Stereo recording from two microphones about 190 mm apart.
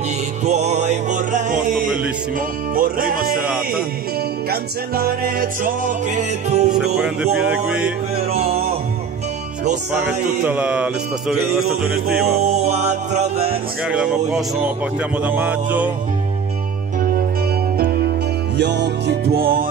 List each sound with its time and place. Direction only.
0.5 s music: 35° right (ahead or behind)
3.4 s speech: 5° right (ahead or behind)
4.5 s music: 55° right (ahead or behind); by 7.0 s 35° right (ahead or behind)
7.0 s speech: 5° right (ahead or behind)
8.3 s music: 30° right (ahead or behind)
10.4 s speech: 5° right (ahead or behind)
12.4 s music: 35° right (ahead or behind)
13.8 s speech: 5° right (ahead or behind)
17.7 s music: 55° right (ahead or behind)